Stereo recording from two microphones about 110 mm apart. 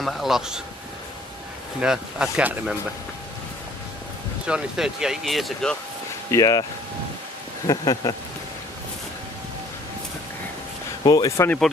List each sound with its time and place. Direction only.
0.0 s speech: 5° right (ahead or behind)
1.8 s speech: 10° right (ahead or behind)
4.5 s speech: 5° right (ahead or behind)
6.3 s speech: 35° left (ahead or behind)
7.6 s speech: 35° left (ahead or behind)
11.1 s speech: 35° left (ahead or behind)